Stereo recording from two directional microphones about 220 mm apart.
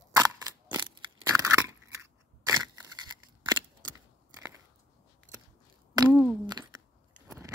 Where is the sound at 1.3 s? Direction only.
15° right (ahead or behind).